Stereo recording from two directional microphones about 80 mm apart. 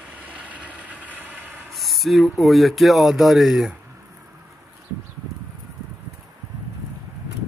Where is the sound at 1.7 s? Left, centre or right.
Centre.